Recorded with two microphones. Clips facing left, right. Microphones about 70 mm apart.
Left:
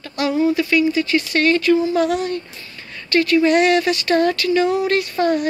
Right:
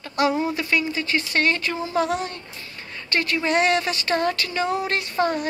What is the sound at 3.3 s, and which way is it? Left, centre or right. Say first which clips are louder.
Speech: left 6 dB; right.